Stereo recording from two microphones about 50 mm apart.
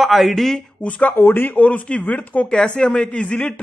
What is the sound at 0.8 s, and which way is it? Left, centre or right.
Speech, left.